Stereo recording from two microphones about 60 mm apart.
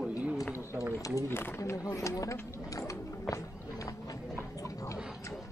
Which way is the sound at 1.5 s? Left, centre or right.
Left.